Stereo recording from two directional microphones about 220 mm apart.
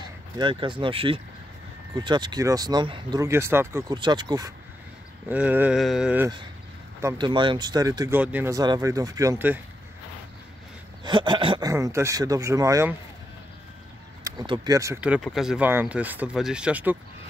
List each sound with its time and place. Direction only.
0.4 s speech: 20° right (ahead or behind)
5.3 s a sound: 5° right (ahead or behind)
7.0 s speech: 15° right (ahead or behind)
11.1 s speech: 20° right (ahead or behind)
14.2 s speech: 20° right (ahead or behind)